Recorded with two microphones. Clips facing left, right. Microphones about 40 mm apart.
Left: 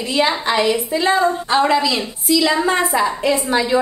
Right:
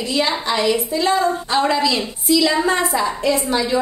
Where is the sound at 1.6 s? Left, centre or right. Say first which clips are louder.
Even; centre.